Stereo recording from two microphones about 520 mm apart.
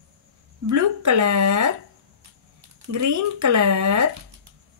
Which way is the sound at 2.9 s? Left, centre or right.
Right.